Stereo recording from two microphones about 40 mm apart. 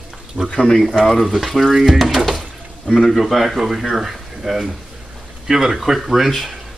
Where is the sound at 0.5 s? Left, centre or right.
Left.